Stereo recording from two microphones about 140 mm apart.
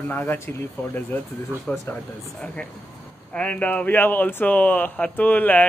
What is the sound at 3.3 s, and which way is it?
Speech, 10° left (ahead or behind).